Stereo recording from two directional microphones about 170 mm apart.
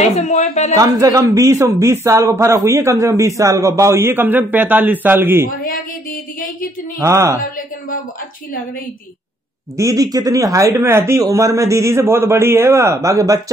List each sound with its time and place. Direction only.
0.1 s speech: 40° left (ahead or behind)
0.7 s speech: 20° right (ahead or behind)
5.6 s speech: 55° left (ahead or behind)
7.0 s speech: 15° right (ahead or behind)
9.8 s speech: 20° right (ahead or behind)